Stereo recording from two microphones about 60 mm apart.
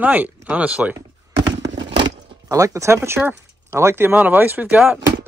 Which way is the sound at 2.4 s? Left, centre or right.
Right.